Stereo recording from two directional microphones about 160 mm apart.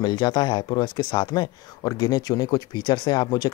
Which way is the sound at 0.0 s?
30° left (ahead or behind).